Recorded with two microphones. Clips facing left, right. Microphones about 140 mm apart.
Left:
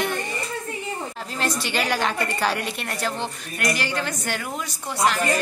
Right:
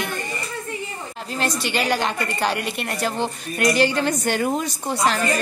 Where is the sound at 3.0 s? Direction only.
15° right (ahead or behind); by 4.6 s 30° right (ahead or behind).